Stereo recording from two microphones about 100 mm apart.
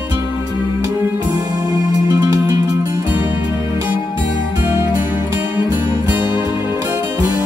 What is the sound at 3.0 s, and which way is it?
Music, 20° right (ahead or behind).